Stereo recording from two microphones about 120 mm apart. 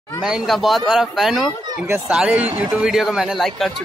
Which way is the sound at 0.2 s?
Centre (ahead or behind).